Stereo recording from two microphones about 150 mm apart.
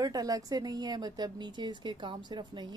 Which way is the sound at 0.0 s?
25° right (ahead or behind).